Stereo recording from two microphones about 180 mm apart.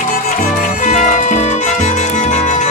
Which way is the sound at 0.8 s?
45° left (ahead or behind).